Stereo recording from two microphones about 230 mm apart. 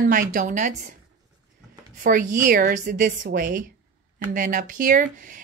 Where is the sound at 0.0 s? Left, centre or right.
Right.